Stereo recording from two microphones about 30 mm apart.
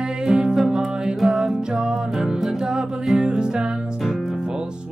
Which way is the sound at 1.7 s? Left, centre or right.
Right.